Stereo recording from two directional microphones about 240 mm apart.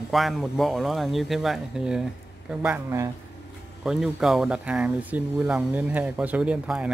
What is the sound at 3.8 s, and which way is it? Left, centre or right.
Speech, centre.